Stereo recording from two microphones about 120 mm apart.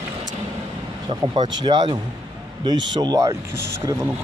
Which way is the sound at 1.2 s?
35° right (ahead or behind).